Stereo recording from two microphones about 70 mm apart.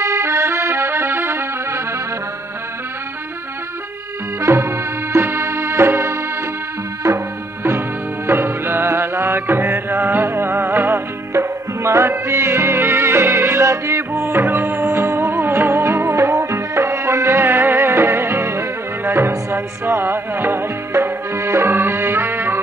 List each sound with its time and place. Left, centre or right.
0.0 s music: right
4.4 s music: right
7.0 s music: right
8.3 s music: right